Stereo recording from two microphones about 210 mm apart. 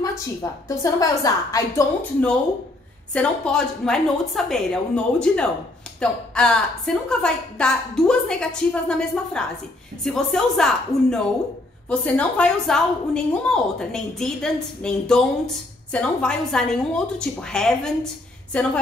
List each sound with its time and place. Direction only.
0.0 s a woman's voice: 15° left (ahead or behind)